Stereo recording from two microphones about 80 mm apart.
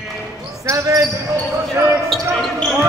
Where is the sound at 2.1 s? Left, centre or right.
Centre.